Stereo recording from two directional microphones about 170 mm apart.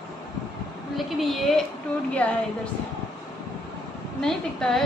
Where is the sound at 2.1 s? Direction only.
5° left (ahead or behind).